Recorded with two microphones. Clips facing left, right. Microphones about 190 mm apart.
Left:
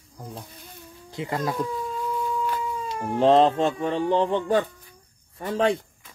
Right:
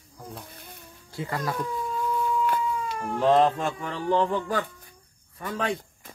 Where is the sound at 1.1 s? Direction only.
20° left (ahead or behind).